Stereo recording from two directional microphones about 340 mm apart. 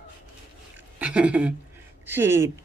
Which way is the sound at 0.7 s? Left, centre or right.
Centre.